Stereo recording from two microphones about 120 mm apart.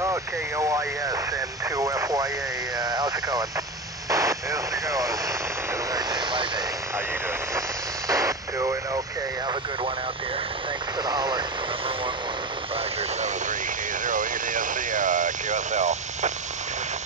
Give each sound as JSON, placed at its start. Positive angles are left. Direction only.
{"t": 0.0, "sound": "speech", "side_deg": -25}
{"t": 1.8, "sound": "radio", "side_deg": -25}
{"t": 2.8, "sound": "a sound", "side_deg": -35}
{"t": 4.1, "sound": "vehicle", "side_deg": -25}
{"t": 8.1, "sound": "radio", "side_deg": -25}
{"t": 11.1, "sound": "speech", "side_deg": -35}
{"t": 14.0, "sound": "vehicle", "side_deg": -90}